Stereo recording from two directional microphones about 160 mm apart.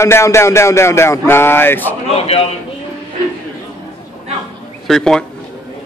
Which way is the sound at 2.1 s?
40° left (ahead or behind).